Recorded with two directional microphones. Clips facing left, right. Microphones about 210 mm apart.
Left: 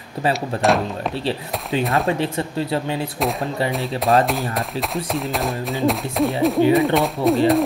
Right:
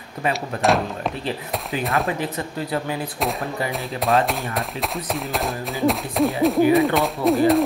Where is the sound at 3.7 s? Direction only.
Centre (ahead or behind).